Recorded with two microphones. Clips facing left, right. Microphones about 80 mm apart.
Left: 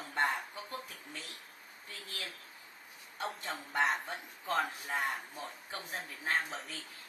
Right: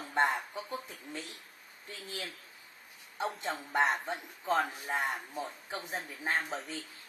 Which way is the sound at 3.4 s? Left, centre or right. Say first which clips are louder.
Right 3 dB; right.